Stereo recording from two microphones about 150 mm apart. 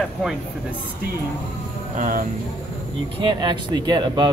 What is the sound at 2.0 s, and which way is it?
Speech, 65° right (ahead or behind).